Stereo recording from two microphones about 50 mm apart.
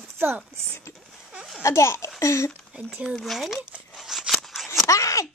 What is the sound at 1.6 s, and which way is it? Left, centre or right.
Speech, left.